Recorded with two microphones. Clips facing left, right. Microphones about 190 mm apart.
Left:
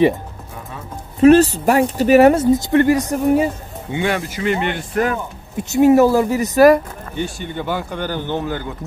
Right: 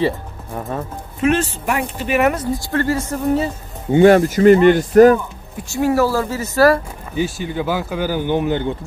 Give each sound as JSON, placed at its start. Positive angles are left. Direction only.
{"t": 1.2, "sound": "speech", "side_deg": 35}
{"t": 3.9, "sound": "speech", "side_deg": -45}
{"t": 5.6, "sound": "speech", "side_deg": 20}
{"t": 7.2, "sound": "speech", "side_deg": -5}